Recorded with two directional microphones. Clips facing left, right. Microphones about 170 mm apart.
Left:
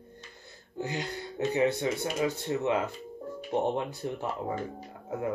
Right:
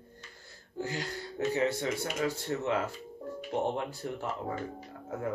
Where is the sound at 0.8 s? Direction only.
20° left (ahead or behind).